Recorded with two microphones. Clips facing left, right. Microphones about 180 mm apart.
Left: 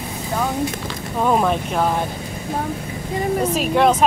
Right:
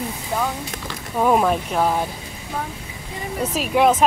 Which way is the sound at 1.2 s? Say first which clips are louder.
Right 1 dB; 5° right (ahead or behind).